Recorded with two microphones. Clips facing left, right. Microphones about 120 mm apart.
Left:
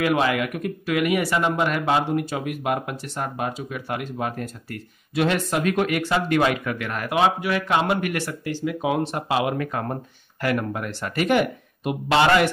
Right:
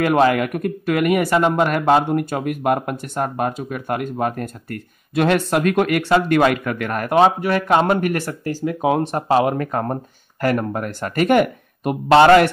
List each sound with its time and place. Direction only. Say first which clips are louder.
0.0 s speech: right 5 dB; 45° right (ahead or behind)